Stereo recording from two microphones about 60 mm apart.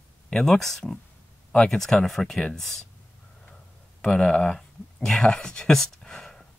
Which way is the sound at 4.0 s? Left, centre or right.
Centre.